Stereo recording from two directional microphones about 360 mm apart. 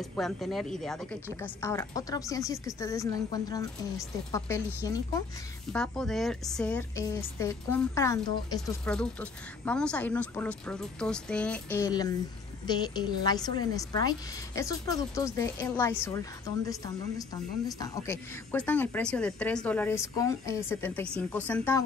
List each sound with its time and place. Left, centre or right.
0.0 s a woman's voice: centre
17.6 s a woman's voice: centre